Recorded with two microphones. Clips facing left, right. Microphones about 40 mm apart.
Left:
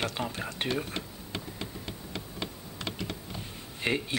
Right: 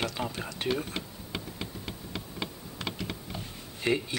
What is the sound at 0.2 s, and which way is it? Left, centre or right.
Speech, centre.